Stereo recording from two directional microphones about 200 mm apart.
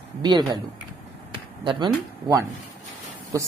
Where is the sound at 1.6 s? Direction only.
25° right (ahead or behind).